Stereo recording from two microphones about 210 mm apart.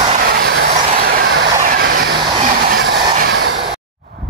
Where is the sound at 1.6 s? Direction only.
45° right (ahead or behind).